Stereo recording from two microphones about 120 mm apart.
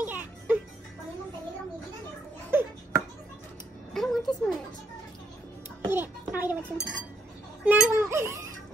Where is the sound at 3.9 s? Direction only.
5° left (ahead or behind).